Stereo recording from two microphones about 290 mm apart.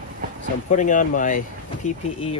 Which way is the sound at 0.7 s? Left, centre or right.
Left.